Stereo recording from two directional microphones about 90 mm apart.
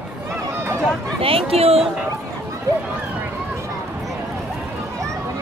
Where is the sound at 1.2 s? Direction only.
90° right.